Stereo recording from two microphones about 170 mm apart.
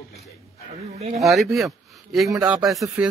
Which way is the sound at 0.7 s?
40° right (ahead or behind).